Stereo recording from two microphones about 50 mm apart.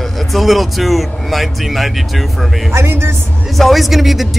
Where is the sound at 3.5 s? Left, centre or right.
Centre.